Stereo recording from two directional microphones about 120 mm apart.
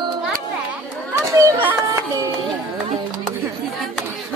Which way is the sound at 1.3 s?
25° right (ahead or behind).